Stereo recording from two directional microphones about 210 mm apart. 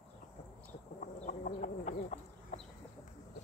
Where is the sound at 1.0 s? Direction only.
35° left (ahead or behind).